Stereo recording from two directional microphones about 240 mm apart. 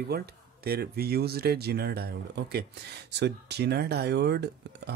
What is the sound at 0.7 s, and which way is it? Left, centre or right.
Speech, right.